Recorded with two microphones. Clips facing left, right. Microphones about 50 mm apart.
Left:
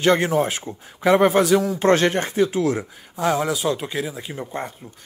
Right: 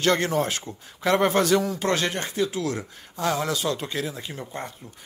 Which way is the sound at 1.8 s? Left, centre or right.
Left.